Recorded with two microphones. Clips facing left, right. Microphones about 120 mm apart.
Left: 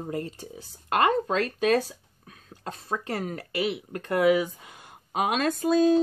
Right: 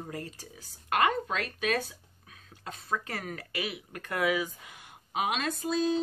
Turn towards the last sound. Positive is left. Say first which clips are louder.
# left 8 dB
turn(degrees=50)  # may be behind; listen again after turning